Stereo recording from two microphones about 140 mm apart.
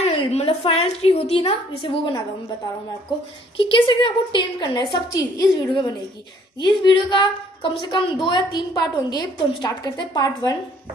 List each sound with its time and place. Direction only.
0.1 s a woman's voice: 45° left (ahead or behind)
3.5 s a woman's voice: 40° left (ahead or behind)